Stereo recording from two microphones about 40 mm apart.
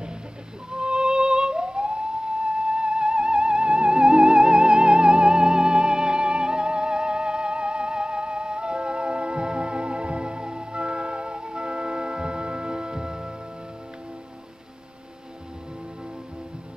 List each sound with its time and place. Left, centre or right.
0.7 s music: right